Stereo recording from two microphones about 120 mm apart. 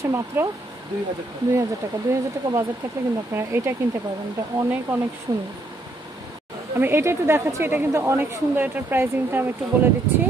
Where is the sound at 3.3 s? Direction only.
20° right (ahead or behind).